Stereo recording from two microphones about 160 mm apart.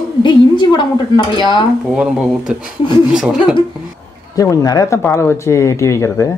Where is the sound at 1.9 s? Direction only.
5° right (ahead or behind).